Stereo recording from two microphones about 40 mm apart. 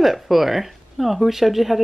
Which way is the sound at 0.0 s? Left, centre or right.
Centre.